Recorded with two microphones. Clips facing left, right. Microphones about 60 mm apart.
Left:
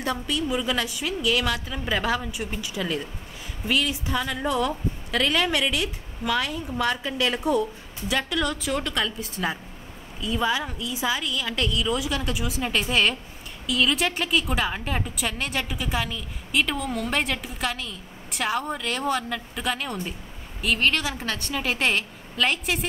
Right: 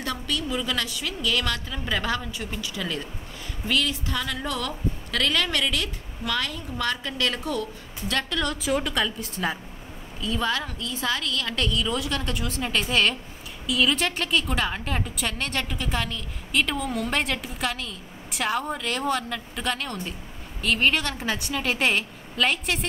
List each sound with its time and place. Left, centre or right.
0.0 s a woman's voice: centre
8.1 s a woman's voice: centre
21.3 s a woman's voice: centre
21.5 s a woman's voice: centre